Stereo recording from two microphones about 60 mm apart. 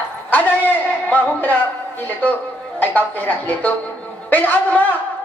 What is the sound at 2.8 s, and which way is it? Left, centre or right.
A man's voice, left.